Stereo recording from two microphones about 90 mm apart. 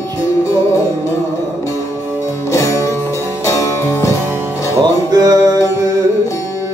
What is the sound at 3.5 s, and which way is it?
Music, 35° left (ahead or behind).